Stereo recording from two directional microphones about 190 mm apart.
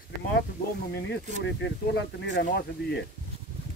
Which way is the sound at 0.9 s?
65° left (ahead or behind).